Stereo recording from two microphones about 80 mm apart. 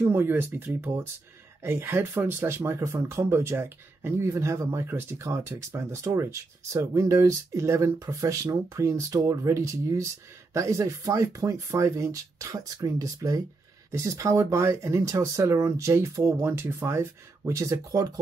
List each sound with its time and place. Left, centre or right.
0.1 s speech: right
16.4 s speech: right